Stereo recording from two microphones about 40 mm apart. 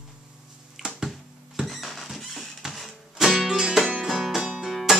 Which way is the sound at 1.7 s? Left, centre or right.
Centre.